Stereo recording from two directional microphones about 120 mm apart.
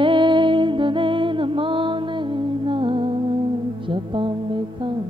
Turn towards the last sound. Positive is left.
turn(degrees=-45)  # may be behind; listen again after turning